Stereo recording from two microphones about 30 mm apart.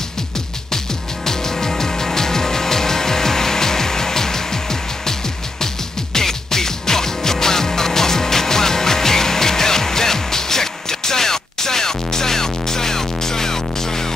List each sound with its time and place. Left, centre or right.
1.2 s music: centre
6.1 s music: centre